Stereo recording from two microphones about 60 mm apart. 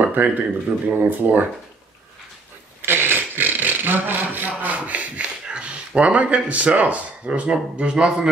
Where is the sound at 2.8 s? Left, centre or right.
Right.